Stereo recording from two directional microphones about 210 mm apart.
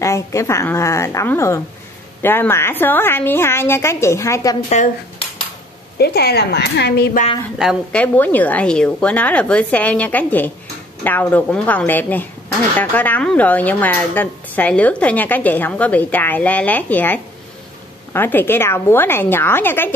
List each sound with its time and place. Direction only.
0.0 s speech: 15° left (ahead or behind)
5.9 s speech: 50° left (ahead or behind)
7.5 s speech: centre (ahead or behind)